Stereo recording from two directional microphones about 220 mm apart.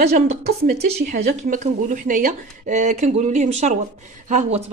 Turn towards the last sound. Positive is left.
turn(degrees=-35)  # may be behind; listen again after turning